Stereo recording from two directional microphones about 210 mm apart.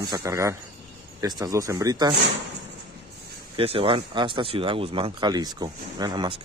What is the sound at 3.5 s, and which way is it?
Speech, 25° right (ahead or behind).